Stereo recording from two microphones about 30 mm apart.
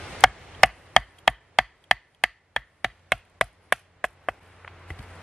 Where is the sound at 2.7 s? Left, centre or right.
Centre.